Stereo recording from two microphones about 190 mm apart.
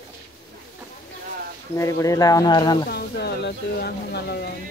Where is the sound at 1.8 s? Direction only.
15° left (ahead or behind).